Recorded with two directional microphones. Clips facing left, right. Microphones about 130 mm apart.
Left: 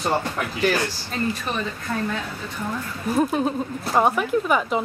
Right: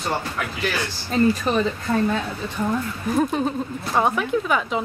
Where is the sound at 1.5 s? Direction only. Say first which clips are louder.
Right 7 dB; 35° right (ahead or behind).